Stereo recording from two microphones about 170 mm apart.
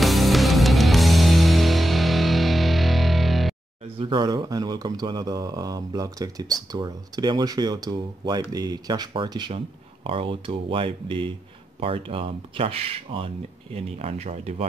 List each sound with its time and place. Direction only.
0.0 s music: centre (ahead or behind)
4.0 s speech: 25° right (ahead or behind)